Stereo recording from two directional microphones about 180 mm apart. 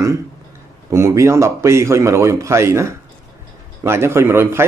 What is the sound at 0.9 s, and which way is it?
Speech, 15° right (ahead or behind).